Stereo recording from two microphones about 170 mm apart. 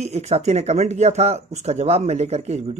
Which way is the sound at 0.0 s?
40° right (ahead or behind).